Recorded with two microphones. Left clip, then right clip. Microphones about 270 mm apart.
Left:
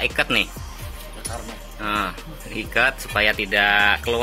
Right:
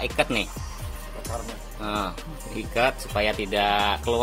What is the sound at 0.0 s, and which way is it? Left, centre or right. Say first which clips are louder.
Speech: left 4 dB; centre.